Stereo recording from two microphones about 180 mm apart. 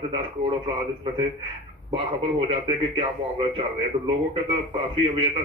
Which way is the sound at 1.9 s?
30° right (ahead or behind).